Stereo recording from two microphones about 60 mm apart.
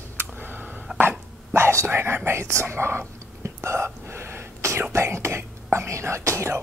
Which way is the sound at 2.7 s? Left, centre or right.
Right.